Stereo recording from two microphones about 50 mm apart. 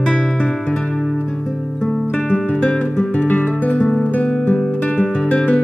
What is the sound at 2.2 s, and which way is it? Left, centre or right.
Music, centre.